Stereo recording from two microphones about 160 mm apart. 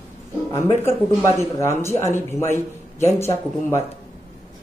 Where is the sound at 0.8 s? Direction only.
15° left (ahead or behind).